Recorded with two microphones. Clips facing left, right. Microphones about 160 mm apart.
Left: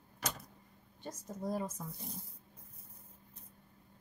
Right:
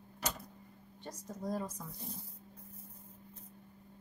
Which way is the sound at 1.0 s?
5° left (ahead or behind).